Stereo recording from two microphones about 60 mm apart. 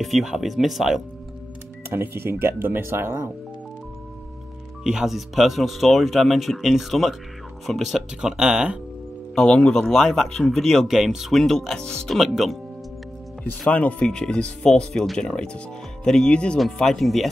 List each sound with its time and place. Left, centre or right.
0.0 s speech: centre
1.9 s speech: right
4.8 s speech: centre
9.3 s speech: centre
10.9 s speech: centre
12.2 s speech: centre
13.7 s speech: centre
16.8 s speech: centre